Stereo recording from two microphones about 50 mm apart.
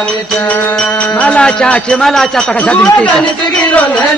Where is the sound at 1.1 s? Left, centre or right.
Left.